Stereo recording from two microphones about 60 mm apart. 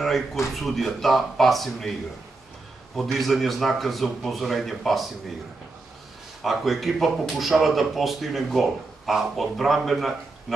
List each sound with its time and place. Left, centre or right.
0.0 s a sound: centre
0.6 s speech: centre
3.0 s speech: centre
6.4 s speech: centre